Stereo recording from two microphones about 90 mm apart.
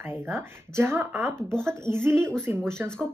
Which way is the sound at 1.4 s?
10° left (ahead or behind).